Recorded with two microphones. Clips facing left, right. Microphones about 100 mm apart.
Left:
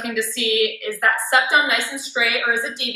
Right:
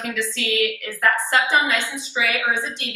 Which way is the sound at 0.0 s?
15° left (ahead or behind).